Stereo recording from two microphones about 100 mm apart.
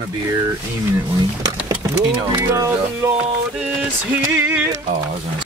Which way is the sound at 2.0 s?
30° right (ahead or behind).